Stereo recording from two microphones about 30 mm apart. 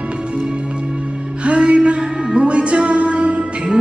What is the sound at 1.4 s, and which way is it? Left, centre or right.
Music, right.